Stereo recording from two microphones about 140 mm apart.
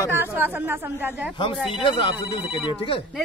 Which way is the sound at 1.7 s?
35° left (ahead or behind).